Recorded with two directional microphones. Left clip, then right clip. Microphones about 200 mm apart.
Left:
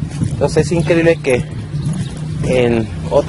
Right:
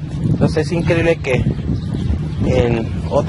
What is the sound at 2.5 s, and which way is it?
Speech, 10° left (ahead or behind).